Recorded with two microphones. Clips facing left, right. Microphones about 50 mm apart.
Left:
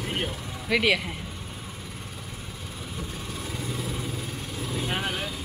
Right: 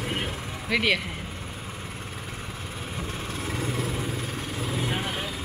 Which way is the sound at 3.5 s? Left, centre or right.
Right.